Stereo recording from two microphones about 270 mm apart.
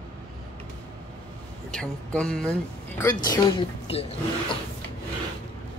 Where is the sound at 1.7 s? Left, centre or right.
Centre.